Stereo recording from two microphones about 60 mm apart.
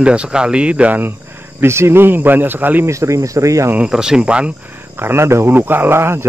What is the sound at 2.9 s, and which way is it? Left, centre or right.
Speech, right.